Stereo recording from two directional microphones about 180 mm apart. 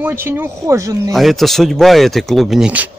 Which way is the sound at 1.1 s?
Centre (ahead or behind).